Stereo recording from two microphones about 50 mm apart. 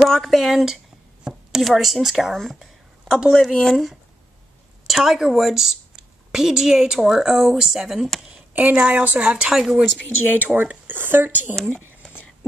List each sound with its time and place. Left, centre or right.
0.0 s speech: centre
1.2 s a sound: centre
1.7 s speech: centre
2.3 s speech: centre
3.1 s a woman's voice: centre
3.3 s a woman's voice: centre
8.7 s a woman's voice: right
9.5 s a woman's voice: centre
10.3 s speech: right